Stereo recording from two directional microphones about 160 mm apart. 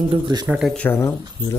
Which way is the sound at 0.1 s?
25° right (ahead or behind).